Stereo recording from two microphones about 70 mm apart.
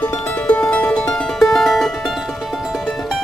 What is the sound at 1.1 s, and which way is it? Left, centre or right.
Music, centre.